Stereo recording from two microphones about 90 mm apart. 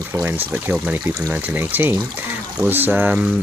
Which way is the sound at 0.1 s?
25° right (ahead or behind).